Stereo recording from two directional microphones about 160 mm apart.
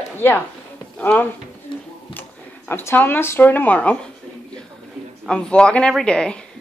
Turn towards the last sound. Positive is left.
turn(degrees=5)  # may be behind; listen again after turning